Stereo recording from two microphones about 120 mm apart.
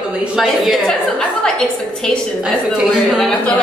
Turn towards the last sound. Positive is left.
turn(degrees=0)  # may be behind; listen again after turning